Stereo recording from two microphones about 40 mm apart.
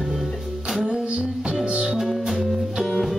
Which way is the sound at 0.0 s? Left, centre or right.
Centre.